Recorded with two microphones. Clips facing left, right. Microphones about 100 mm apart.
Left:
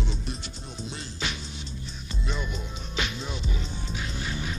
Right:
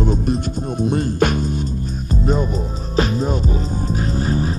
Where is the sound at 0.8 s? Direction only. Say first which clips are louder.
Right 18 dB; 55° right (ahead or behind).